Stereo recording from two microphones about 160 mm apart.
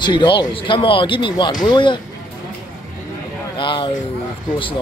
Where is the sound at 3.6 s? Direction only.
30° left (ahead or behind).